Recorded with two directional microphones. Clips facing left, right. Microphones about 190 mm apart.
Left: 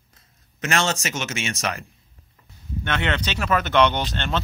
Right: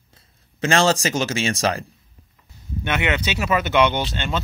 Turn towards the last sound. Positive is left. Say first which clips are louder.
# right 1 dB
turn(degrees=-10)  # may be behind; listen again after turning